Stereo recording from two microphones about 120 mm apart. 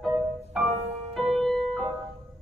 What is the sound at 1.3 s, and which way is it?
Music, centre (ahead or behind).